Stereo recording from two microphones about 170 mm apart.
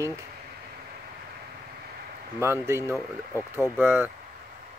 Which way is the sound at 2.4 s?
15° right (ahead or behind).